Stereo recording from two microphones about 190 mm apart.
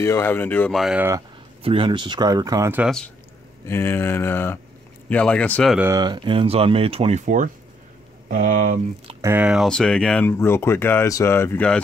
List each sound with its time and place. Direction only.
0.0 s speech: 15° left (ahead or behind)
1.6 s speech: 30° right (ahead or behind); by 2.9 s 15° right (ahead or behind)
3.6 s speech: 15° left (ahead or behind)
5.8 s speech: 20° right (ahead or behind); by 9.1 s 45° right (ahead or behind)
9.2 s speech: 10° right (ahead or behind); by 11.8 s 10° left (ahead or behind)